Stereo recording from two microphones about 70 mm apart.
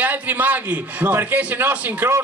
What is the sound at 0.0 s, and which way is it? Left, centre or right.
A man's voice, right.